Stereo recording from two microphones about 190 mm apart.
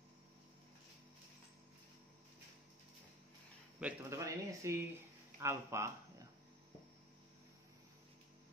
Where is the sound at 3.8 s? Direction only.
15° right (ahead or behind).